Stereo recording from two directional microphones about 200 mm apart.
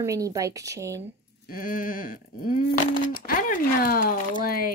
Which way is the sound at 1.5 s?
45° left (ahead or behind).